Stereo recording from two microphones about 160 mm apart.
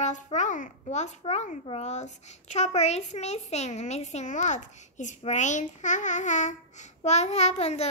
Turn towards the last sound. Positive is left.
turn(degrees=45)  # may be behind; listen again after turning